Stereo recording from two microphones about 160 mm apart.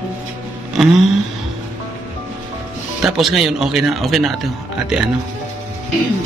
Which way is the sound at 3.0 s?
Centre (ahead or behind).